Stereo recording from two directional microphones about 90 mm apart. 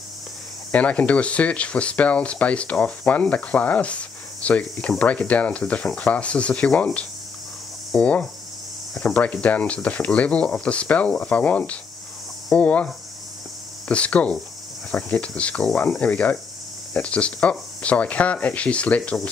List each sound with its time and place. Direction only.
0.7 s speech: 15° left (ahead or behind)